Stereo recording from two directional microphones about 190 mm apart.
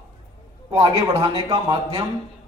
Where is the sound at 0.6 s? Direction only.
25° right (ahead or behind).